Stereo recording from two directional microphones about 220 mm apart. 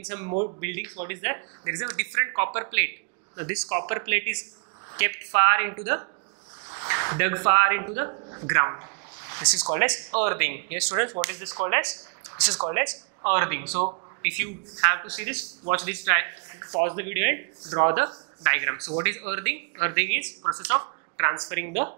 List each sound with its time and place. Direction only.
0.1 s speech: 15° right (ahead or behind)
13.7 s a man's voice: 30° right (ahead or behind)
14.2 s speech: 15° right (ahead or behind)